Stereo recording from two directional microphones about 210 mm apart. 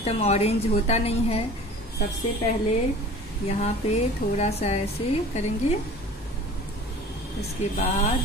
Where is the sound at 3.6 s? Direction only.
30° left (ahead or behind).